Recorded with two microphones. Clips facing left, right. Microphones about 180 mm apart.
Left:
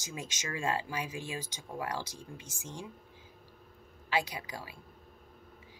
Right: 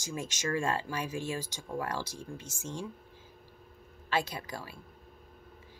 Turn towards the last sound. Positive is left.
turn(degrees=15)  # may be behind; listen again after turning